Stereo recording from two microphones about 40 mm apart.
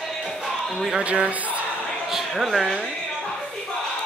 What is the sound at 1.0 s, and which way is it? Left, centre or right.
Speech, right.